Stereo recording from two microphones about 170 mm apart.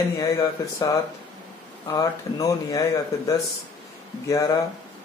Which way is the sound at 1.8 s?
20° left (ahead or behind).